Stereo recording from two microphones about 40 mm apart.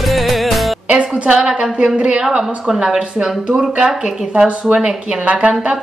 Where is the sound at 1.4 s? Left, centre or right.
Centre.